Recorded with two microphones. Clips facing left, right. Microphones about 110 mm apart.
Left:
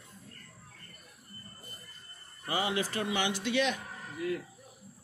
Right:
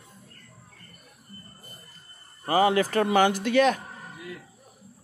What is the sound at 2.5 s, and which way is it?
Speech, 50° right (ahead or behind).